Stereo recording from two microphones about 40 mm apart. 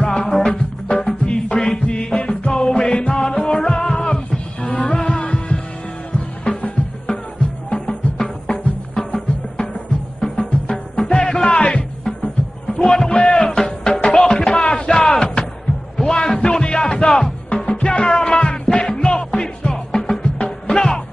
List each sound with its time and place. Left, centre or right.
0.0 s music: centre
1.2 s music: left
7.7 s music: left
10.2 s music: left
11.5 s music: left
13.6 s music: centre